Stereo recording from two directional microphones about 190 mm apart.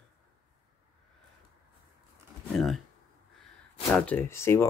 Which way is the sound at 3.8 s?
10° left (ahead or behind).